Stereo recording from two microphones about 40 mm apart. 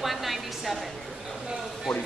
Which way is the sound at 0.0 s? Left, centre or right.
Centre.